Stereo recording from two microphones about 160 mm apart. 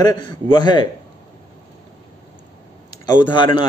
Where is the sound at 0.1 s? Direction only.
25° left (ahead or behind).